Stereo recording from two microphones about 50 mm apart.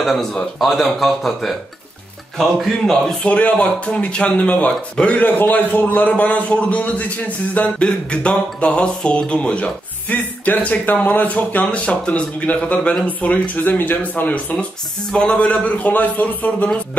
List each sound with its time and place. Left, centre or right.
0.0 s speech: centre
3.3 s a man's voice: left
7.8 s a man's voice: left
10.0 s a man's voice: left